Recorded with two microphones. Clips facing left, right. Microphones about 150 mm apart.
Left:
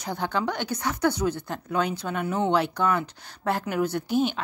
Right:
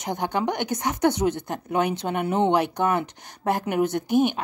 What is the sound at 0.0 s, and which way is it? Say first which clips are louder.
Speech: right 2 dB; 15° right (ahead or behind).